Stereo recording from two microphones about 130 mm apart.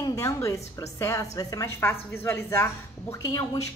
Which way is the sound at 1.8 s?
15° left (ahead or behind).